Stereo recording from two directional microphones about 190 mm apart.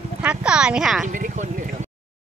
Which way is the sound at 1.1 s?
45° right (ahead or behind).